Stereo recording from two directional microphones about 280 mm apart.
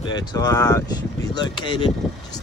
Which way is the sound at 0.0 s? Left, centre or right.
Centre.